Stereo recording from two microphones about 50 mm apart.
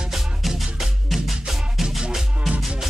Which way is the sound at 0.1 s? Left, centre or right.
Centre.